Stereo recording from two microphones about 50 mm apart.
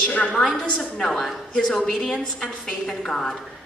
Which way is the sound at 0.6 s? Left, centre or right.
Centre.